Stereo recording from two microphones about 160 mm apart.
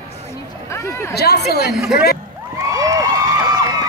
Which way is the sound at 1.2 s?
90° left.